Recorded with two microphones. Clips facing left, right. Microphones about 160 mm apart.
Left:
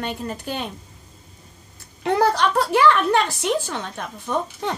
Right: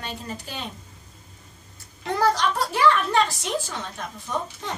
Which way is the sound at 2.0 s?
60° left (ahead or behind).